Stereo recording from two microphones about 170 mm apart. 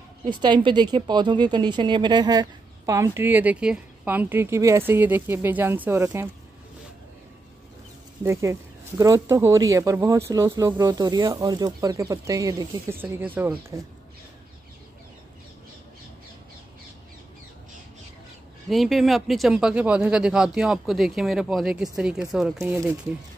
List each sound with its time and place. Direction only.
0.3 s a woman's voice: 25° right (ahead or behind)
8.2 s speech: 15° right (ahead or behind)
18.7 s speech: centre (ahead or behind)